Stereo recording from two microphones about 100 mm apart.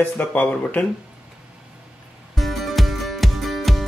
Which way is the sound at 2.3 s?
Centre (ahead or behind).